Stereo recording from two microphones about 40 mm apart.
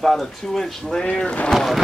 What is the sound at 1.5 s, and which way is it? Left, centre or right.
Speech, centre.